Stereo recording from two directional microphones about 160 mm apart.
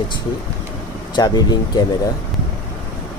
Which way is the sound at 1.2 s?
25° left (ahead or behind).